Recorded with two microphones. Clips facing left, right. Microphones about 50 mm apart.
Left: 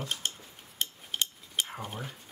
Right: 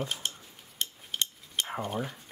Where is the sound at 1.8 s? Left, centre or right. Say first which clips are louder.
Right 6 dB; centre.